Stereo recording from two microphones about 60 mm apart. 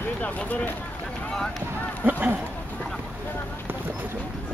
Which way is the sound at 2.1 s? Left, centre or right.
Right.